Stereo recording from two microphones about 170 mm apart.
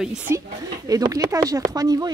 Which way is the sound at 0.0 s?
5° right (ahead or behind).